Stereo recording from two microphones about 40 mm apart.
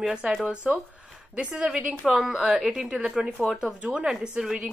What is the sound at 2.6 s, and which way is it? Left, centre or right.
A woman's voice, centre.